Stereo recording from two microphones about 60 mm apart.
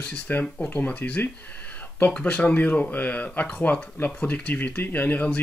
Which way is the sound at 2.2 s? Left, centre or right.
Left.